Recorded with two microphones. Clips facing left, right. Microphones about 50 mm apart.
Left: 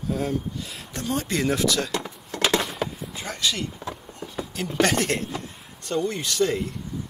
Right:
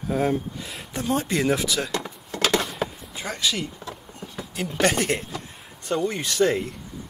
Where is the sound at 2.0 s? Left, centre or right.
Centre.